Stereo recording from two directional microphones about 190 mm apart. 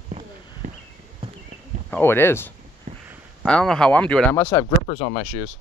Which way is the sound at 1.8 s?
10° left (ahead or behind).